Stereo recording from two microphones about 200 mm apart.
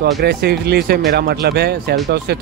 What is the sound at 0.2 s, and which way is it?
Speech, 55° right (ahead or behind).